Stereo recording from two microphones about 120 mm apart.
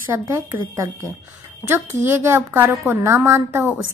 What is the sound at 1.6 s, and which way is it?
A woman's voice, 20° right (ahead or behind).